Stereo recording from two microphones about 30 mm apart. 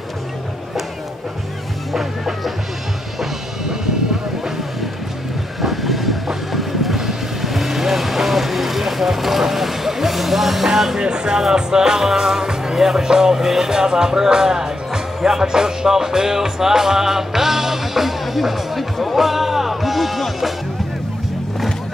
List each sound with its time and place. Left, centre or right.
5.6 s train: centre
11.0 s music: right; by 20.5 s centre